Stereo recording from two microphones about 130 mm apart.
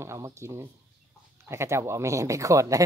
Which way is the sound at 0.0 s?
20° right (ahead or behind).